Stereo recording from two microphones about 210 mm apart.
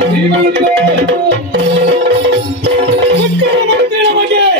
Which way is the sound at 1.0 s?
60° right (ahead or behind).